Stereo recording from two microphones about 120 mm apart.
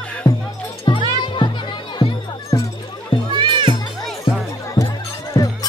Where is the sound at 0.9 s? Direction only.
35° left (ahead or behind).